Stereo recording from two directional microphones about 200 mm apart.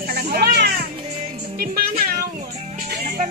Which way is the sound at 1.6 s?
50° right (ahead or behind).